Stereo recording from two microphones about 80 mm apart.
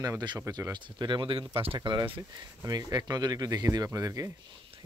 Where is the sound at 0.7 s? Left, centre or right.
Right.